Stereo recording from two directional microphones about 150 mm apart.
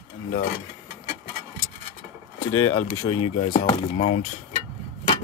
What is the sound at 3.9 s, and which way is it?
Speech, 45° left (ahead or behind).